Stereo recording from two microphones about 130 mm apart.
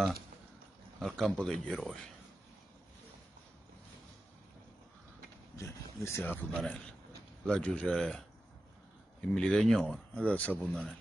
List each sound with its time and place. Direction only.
0.9 s speech: centre (ahead or behind)
6.0 s speech: 15° left (ahead or behind)
6.5 s speech: 5° left (ahead or behind)
9.2 s speech: 5° left (ahead or behind)
10.7 s speech: centre (ahead or behind)